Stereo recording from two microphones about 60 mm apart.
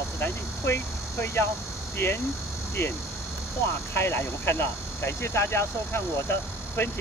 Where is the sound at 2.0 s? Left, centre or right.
Left.